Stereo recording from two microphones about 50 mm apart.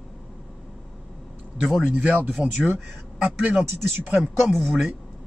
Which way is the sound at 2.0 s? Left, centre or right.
Right.